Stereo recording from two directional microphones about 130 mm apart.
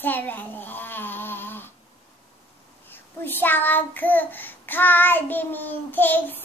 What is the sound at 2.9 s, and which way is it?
Child singing, 15° left (ahead or behind).